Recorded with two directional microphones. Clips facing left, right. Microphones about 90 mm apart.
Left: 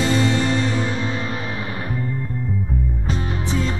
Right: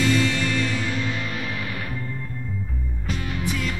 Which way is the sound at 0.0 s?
30° left (ahead or behind).